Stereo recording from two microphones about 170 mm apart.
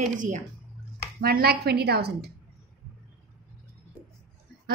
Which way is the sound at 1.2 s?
65° right (ahead or behind).